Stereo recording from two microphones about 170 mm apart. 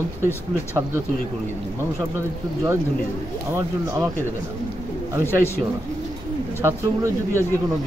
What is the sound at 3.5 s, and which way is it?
Speech, 15° right (ahead or behind).